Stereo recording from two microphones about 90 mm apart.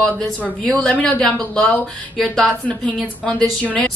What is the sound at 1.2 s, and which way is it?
A woman's voice, 5° left (ahead or behind).